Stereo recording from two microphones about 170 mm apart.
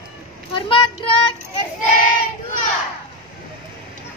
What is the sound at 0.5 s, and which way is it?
Child singing, 30° left (ahead or behind).